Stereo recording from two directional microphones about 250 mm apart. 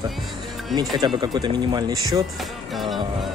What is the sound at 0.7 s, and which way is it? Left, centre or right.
Speech, centre.